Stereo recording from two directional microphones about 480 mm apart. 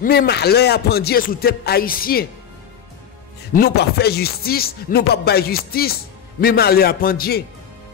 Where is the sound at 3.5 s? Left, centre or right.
Centre.